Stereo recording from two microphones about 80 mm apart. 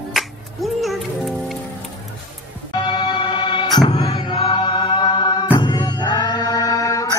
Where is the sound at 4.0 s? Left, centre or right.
Left.